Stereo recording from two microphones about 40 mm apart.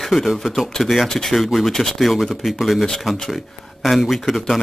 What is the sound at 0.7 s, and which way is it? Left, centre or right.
Speech, centre.